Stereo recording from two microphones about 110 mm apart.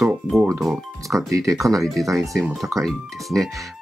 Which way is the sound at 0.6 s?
Centre (ahead or behind).